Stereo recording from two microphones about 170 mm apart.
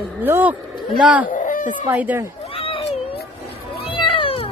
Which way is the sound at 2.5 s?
30° left (ahead or behind).